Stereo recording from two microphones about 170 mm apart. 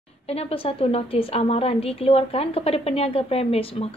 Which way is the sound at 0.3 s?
35° left (ahead or behind).